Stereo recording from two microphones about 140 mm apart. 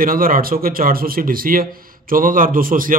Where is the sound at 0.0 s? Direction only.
90° right.